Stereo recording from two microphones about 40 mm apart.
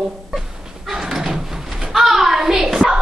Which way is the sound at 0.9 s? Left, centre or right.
Centre.